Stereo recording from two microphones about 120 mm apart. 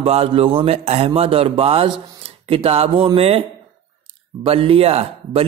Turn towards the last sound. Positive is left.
turn(degrees=-55)  # may be behind; listen again after turning